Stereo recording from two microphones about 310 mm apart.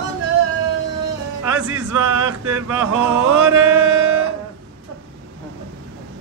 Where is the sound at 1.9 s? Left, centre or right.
Right.